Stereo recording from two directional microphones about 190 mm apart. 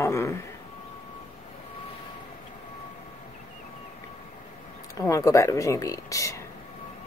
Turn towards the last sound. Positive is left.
turn(degrees=15)  # may be behind; listen again after turning